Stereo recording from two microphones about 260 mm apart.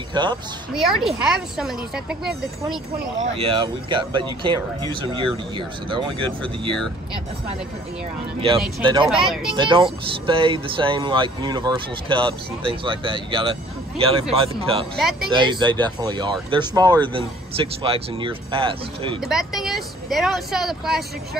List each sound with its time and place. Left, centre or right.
0.1 s speech: centre
0.7 s speech: centre
3.3 s speech: right
8.8 s speech: centre
9.1 s speech: centre
9.6 s speech: centre
15.0 s speech: centre
15.2 s speech: centre
19.2 s speech: centre